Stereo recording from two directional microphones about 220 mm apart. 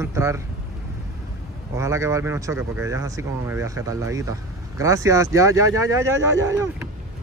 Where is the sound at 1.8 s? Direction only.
15° right (ahead or behind).